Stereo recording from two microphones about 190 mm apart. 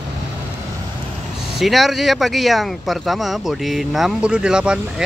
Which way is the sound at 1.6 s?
Centre (ahead or behind).